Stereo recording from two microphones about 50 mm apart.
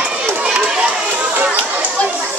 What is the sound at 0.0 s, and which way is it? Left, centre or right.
Run, centre.